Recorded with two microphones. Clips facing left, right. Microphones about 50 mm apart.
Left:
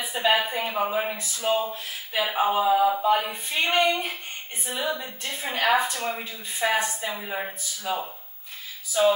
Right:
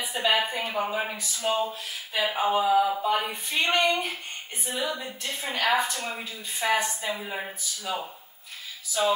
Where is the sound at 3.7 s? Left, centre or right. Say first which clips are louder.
Left 2 dB; left.